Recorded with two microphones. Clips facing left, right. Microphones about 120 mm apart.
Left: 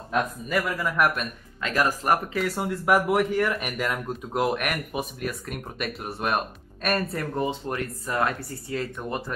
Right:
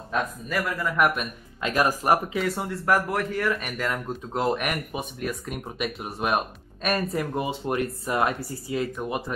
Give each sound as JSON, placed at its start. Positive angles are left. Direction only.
{"t": 0.1, "sound": "a man's voice", "side_deg": 0}
{"t": 1.6, "sound": "speech", "side_deg": -20}
{"t": 2.0, "sound": "a man's voice", "side_deg": -5}
{"t": 7.3, "sound": "speech", "side_deg": -10}
{"t": 7.7, "sound": "speech", "side_deg": -25}
{"t": 8.4, "sound": "a man's voice", "side_deg": -5}